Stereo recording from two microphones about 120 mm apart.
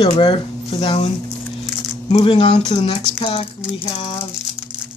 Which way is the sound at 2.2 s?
50° left (ahead or behind).